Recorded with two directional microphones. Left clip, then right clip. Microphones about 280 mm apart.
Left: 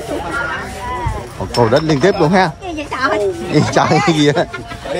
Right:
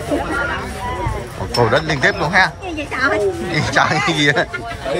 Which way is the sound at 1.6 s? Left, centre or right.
Left.